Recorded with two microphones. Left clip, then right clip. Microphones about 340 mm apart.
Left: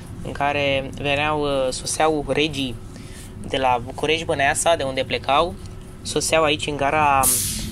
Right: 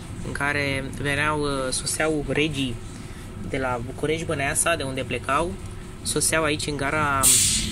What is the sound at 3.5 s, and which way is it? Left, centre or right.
Speech, left.